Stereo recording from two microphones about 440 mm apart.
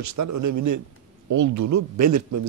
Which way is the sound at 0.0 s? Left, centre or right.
Right.